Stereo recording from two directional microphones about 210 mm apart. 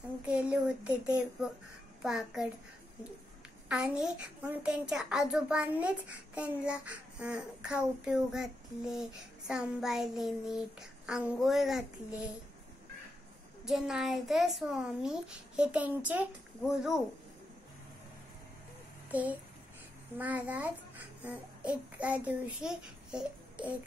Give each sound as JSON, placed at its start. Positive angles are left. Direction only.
{"t": 0.3, "sound": "a child's voice", "side_deg": -5}
{"t": 3.6, "sound": "a child's voice", "side_deg": -5}
{"t": 13.7, "sound": "a child's voice", "side_deg": 0}
{"t": 19.0, "sound": "a child's voice", "side_deg": -5}